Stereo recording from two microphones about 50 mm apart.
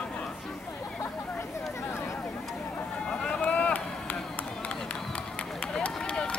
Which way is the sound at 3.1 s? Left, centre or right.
Left.